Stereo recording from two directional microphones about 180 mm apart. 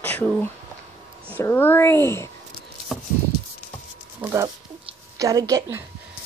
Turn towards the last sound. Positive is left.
turn(degrees=-20)  # may be behind; listen again after turning